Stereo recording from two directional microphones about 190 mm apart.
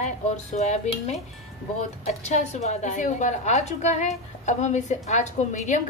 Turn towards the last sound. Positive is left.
turn(degrees=40)  # may be behind; listen again after turning